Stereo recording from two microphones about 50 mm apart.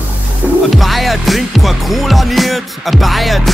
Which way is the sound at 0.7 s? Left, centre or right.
Centre.